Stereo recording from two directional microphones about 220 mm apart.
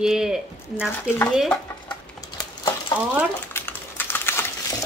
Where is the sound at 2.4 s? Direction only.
15° left (ahead or behind).